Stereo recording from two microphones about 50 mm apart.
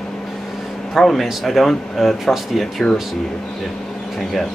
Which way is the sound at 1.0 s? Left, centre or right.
Centre.